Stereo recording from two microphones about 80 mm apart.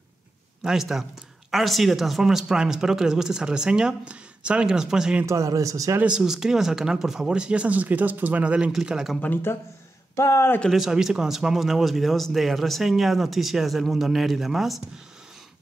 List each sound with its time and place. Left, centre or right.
0.7 s speech: centre
5.2 s speech: right
6.0 s speech: centre
9.2 s speech: left
10.7 s speech: centre